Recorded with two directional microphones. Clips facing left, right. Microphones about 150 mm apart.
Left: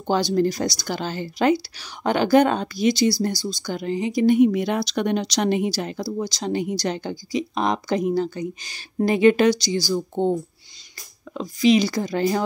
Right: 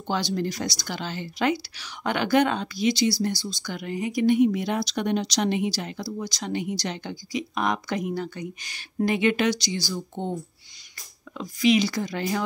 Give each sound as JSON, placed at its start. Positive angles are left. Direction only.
{"t": 0.0, "sound": "speech", "side_deg": 40}
{"t": 4.4, "sound": "speech", "side_deg": 65}
{"t": 5.5, "sound": "speech", "side_deg": 45}
{"t": 11.3, "sound": "speech", "side_deg": 35}